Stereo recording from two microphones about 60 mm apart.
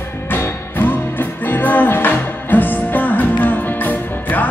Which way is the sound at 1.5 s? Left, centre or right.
Left.